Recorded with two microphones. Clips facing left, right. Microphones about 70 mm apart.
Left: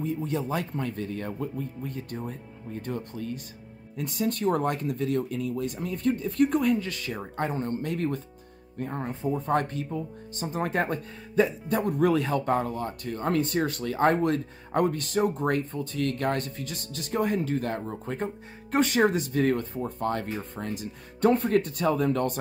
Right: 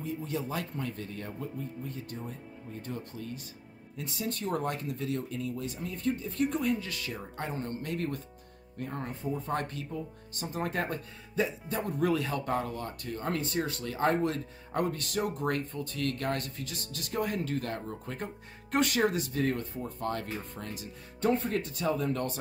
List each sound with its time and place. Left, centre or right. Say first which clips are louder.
0.0 s a man's voice: left 5 dB; left
6.9 s speech: left 5 dB; left
9.2 s a man's voice: left 7 dB; left
11.7 s speech: left 6 dB; left
21.2 s speech: left 6 dB; left